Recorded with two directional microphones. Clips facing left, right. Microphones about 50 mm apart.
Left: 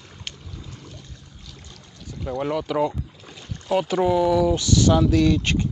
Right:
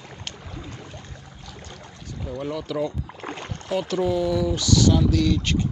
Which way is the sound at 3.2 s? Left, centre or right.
Right.